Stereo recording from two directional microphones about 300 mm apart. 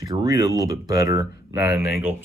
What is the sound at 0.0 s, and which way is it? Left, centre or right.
Speech, centre.